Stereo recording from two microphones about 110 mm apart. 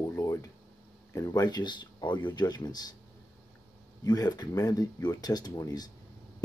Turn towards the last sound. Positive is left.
turn(degrees=35)  # may be behind; listen again after turning